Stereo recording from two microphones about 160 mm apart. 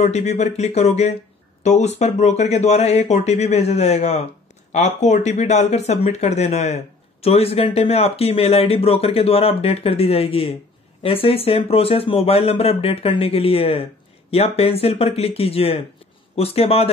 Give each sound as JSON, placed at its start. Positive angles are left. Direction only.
{"t": 0.0, "sound": "speech", "side_deg": 45}